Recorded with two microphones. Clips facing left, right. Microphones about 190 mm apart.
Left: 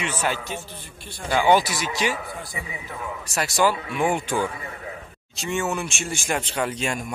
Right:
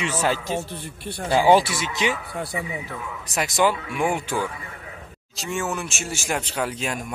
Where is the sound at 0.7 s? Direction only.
65° right (ahead or behind).